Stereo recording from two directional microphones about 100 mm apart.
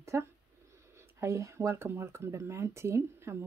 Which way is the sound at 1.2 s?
30° right (ahead or behind).